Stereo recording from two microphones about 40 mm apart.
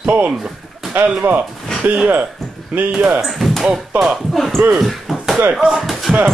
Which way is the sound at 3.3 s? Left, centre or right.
Centre.